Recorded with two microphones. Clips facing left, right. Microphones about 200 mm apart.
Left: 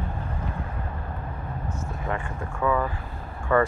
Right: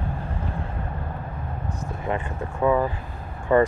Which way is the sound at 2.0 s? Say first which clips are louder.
Right 4 dB; 20° right (ahead or behind).